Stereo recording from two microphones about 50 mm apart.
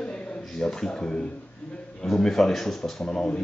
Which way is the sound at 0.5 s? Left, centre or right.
Centre.